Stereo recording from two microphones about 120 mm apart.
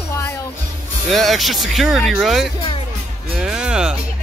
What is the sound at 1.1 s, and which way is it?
Speech, centre (ahead or behind).